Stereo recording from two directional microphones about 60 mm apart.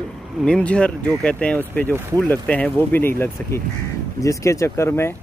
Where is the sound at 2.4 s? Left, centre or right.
Left.